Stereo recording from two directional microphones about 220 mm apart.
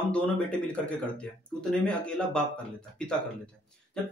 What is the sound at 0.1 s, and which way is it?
Speech, 5° left (ahead or behind).